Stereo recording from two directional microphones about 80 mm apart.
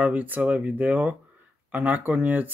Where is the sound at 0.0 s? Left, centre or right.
Centre.